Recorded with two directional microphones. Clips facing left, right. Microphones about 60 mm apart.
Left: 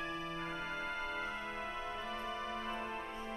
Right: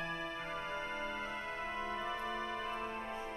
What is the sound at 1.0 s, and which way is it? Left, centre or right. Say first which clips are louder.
Music: even; centre.